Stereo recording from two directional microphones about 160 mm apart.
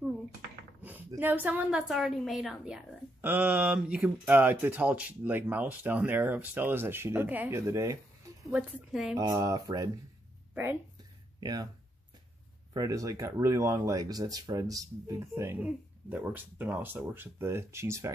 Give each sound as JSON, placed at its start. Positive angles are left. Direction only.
{"t": 0.8, "sound": "a woman's voice", "side_deg": -10}
{"t": 8.5, "sound": "a woman's voice", "side_deg": 0}
{"t": 9.2, "sound": "speech", "side_deg": -20}
{"t": 11.3, "sound": "speech", "side_deg": -25}
{"t": 12.7, "sound": "a woman's voice", "side_deg": -20}